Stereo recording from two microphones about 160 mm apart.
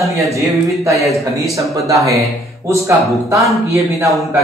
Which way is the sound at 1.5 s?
20° right (ahead or behind).